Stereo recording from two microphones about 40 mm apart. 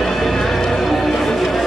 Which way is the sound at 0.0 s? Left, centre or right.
Centre.